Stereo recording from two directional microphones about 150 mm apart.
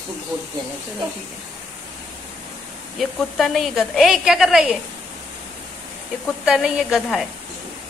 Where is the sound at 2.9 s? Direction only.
Centre (ahead or behind).